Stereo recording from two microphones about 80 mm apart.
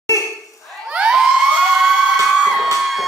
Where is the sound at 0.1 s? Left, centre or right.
Right.